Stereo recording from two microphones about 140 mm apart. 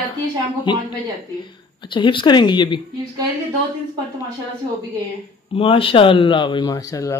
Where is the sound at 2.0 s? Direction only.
35° left (ahead or behind).